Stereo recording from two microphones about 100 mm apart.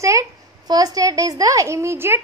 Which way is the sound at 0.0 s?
35° right (ahead or behind).